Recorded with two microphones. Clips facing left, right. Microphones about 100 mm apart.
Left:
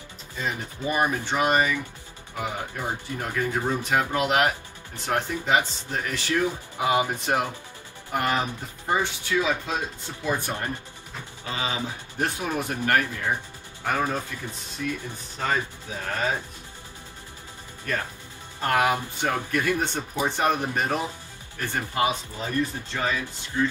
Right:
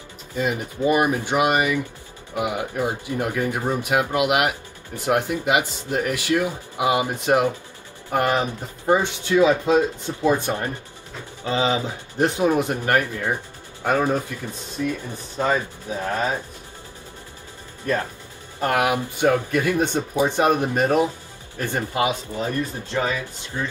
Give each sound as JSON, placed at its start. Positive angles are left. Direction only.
{"t": 0.4, "sound": "speech", "side_deg": -15}
{"t": 18.6, "sound": "speech", "side_deg": -15}
{"t": 23.5, "sound": "speech", "side_deg": -25}